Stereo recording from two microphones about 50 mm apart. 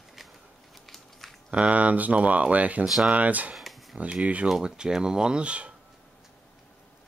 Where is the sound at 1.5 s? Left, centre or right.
Right.